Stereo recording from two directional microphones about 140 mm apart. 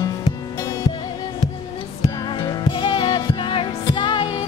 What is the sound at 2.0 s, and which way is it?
Music, 30° left (ahead or behind).